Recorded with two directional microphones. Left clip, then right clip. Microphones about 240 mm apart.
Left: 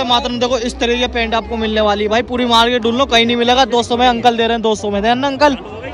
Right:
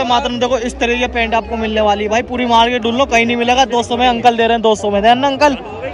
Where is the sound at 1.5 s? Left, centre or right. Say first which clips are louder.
Left 1 dB; left.